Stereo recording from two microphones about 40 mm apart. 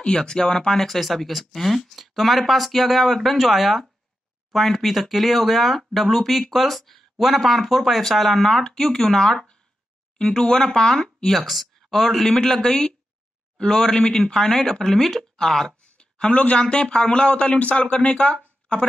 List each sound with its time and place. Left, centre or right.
0.2 s speech: centre
0.8 s speech: centre
11.2 s speech: centre
15.8 s a sound: left
16.5 s a man's voice: left